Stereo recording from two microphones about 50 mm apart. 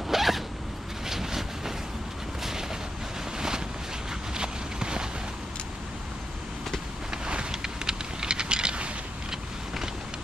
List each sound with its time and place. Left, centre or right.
0.1 s zipper: centre
1.0 s vehicle: centre
3.3 s boat: centre
4.3 s walk: centre
7.2 s vehicle: centre